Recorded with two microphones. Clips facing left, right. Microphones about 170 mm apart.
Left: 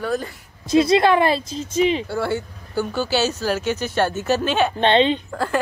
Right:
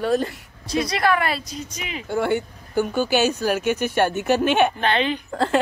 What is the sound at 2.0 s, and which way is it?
Speech, 15° right (ahead or behind).